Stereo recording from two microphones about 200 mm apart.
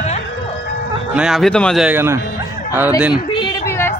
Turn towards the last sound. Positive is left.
turn(degrees=10)  # may be behind; listen again after turning